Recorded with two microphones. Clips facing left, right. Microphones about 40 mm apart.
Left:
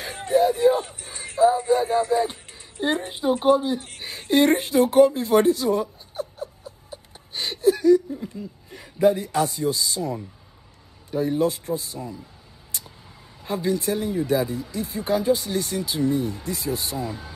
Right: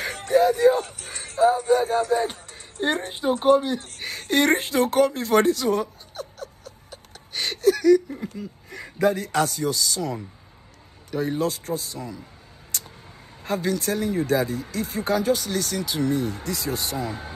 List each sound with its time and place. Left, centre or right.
0.0 s a sound: right
1.7 s speech: right
6.1 s a sound: left
7.8 s speech: right
8.4 s speech: right
9.7 s speech: left
11.1 s speech: right
13.4 s vehicle: right
13.8 s speech: right
15.4 s speech: centre
16.0 s speech: right